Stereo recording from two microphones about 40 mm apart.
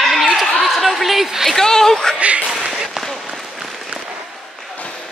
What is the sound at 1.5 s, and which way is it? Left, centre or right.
Speech, centre.